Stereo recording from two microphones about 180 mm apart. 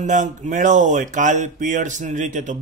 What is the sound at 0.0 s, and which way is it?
Speech, 45° right (ahead or behind).